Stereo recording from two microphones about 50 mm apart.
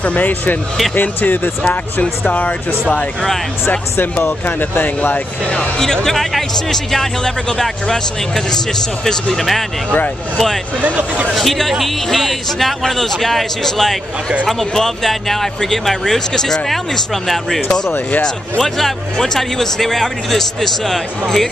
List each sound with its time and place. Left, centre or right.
0.0 s speech: left
4.0 s speech: left
6.0 s speech: centre
10.8 s speech: right
11.3 s speech: centre